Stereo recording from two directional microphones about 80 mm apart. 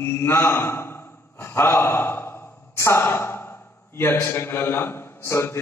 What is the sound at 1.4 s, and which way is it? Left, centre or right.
Speech, left.